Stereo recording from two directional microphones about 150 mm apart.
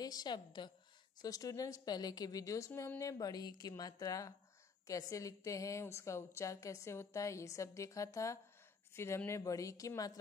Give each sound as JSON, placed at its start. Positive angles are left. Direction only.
{"t": 0.0, "sound": "a woman's voice", "side_deg": 25}